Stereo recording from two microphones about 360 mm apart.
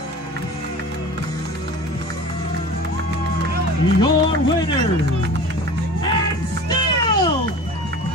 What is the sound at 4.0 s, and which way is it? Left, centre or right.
Music, centre.